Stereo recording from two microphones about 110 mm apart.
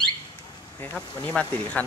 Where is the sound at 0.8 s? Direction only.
10° left (ahead or behind).